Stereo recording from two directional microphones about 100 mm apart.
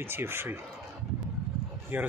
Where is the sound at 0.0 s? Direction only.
25° right (ahead or behind).